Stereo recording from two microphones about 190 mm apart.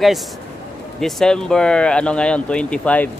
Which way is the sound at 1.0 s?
5° left (ahead or behind).